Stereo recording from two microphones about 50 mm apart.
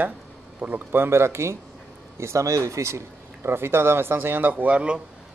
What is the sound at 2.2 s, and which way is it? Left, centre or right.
Speech, right.